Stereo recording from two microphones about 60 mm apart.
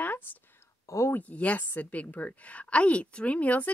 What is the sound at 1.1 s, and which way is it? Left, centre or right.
A woman's voice, left.